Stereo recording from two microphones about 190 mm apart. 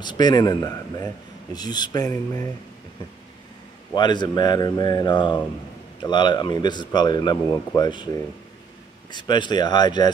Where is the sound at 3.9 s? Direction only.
25° left (ahead or behind).